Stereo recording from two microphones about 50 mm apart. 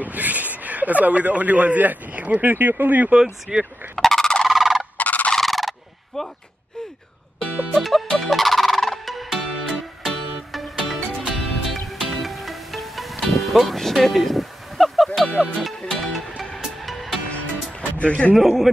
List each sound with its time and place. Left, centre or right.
0.0 s speech: right
3.5 s speech: centre
3.9 s fowl: centre
4.5 s fowl: centre
4.9 s fowl: left
5.3 s fowl: centre
7.7 s music: centre
17.3 s music: left
18.3 s a man's voice: centre